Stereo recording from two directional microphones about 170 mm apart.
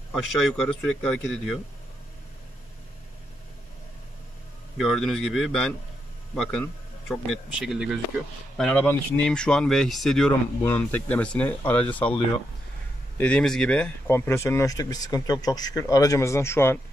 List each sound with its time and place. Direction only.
0.1 s speech: centre (ahead or behind)
4.7 s speech: centre (ahead or behind)
13.2 s speech: 5° left (ahead or behind)